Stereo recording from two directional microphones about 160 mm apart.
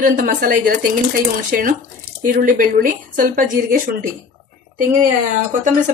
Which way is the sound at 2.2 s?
60° right (ahead or behind).